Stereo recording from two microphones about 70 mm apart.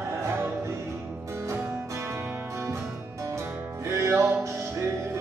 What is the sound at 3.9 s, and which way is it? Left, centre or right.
Music, right.